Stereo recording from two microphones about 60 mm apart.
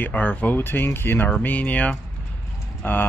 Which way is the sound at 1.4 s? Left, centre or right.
Left.